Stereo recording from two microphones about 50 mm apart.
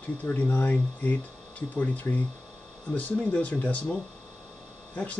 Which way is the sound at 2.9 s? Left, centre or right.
Left.